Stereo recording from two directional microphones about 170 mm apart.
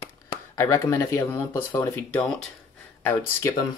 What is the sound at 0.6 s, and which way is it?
Speech, 15° left (ahead or behind).